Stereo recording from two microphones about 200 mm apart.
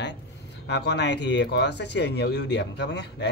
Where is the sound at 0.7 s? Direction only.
60° left (ahead or behind).